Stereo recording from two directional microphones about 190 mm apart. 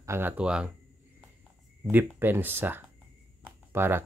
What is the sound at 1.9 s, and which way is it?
Speech, 10° right (ahead or behind).